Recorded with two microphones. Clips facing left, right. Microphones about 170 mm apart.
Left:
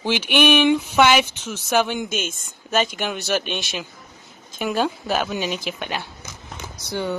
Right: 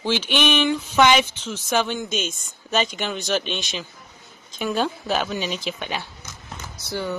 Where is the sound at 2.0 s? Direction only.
55° left (ahead or behind).